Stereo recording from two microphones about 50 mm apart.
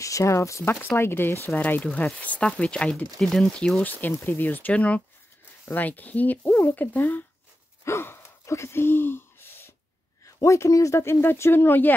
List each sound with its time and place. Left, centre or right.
0.0 s speech: left
0.9 s speech: left
1.4 s speech: left
1.8 s speech: left
3.2 s speech: centre
3.5 s speech: centre
3.8 s speech: left
7.8 s gasp: left
8.5 s speech: left
10.2 s speech: left
11.1 s speech: left